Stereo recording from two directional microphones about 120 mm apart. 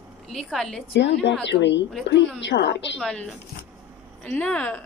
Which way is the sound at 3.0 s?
5° left (ahead or behind).